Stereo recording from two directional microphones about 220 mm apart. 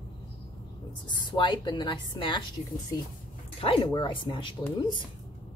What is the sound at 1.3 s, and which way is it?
A woman's voice, 20° left (ahead or behind).